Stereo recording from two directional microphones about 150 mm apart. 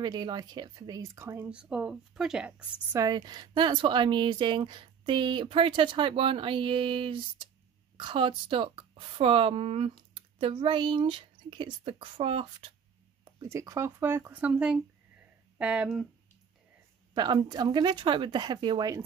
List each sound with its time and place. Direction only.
0.0 s speech: 30° right (ahead or behind); by 2.5 s 5° right (ahead or behind)
2.9 s a woman's voice: 25° right (ahead or behind)
13.2 s speech: 20° right (ahead or behind); by 16.1 s 5° right (ahead or behind)
17.1 s speech: 30° right (ahead or behind)